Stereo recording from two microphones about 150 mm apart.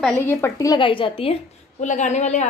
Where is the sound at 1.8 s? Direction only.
55° left (ahead or behind).